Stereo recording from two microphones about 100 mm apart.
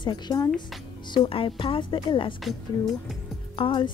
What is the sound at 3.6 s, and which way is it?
Speech, 55° left (ahead or behind).